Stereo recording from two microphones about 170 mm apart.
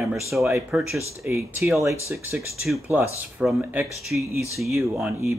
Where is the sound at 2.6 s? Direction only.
Centre (ahead or behind).